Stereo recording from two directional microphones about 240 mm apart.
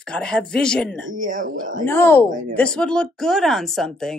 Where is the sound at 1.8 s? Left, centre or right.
Centre.